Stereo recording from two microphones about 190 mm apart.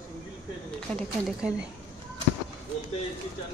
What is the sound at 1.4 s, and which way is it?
Speech, 5° right (ahead or behind).